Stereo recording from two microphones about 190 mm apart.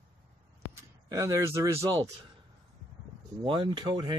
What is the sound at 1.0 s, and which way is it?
Speech, 15° right (ahead or behind).